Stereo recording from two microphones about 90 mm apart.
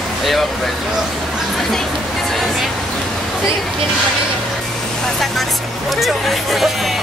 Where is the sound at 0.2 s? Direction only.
Centre (ahead or behind).